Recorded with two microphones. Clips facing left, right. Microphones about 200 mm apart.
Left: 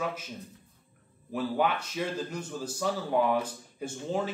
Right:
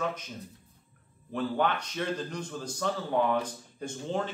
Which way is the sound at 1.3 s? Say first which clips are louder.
Even; 5° left (ahead or behind).